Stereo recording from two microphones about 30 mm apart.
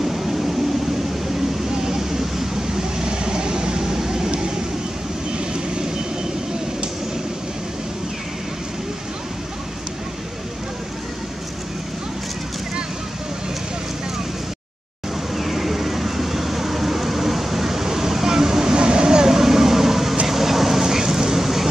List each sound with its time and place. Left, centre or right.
0.0 s vehicle: centre
1.7 s vehicle: centre
15.3 s vehicle: centre